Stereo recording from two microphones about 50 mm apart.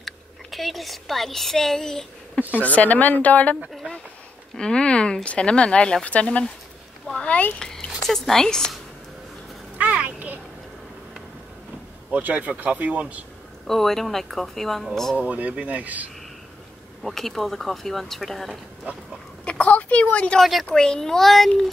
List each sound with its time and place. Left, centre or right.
0.0 s a woman's voice: centre
2.6 s speech: left
4.6 s speech: centre
7.2 s a sound: left
7.5 s speech: centre
9.8 s a sound: right
12.1 s speech: right
13.7 s speech: centre
15.1 s speech: right
17.0 s speech: centre
19.4 s speech: left
20.3 s speech: centre
20.7 s a child's voice: centre